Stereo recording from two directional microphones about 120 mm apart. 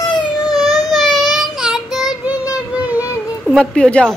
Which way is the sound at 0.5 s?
Centre (ahead or behind).